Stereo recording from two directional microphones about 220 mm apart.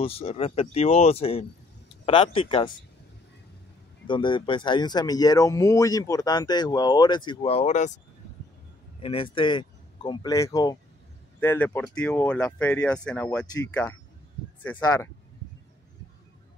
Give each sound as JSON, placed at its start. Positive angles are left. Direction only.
{"t": 0.0, "sound": "speech", "side_deg": 25}
{"t": 4.1, "sound": "speech", "side_deg": 20}
{"t": 9.0, "sound": "speech", "side_deg": 25}